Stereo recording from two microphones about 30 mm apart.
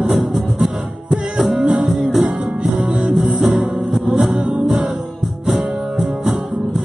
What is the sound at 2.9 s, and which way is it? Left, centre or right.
Music, right.